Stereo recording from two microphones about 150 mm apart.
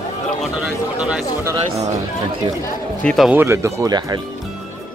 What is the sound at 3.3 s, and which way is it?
Speech, 15° right (ahead or behind).